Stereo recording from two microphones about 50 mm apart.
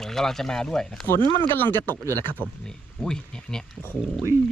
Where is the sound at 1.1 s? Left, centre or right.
Left.